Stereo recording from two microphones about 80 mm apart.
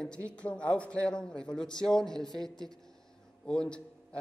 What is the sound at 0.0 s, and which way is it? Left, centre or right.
A woman's voice, centre.